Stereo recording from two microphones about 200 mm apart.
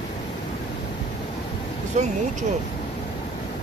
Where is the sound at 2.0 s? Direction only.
35° right (ahead or behind).